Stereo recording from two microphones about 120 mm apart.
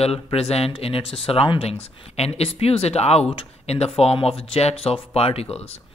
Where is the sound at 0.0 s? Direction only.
55° left (ahead or behind).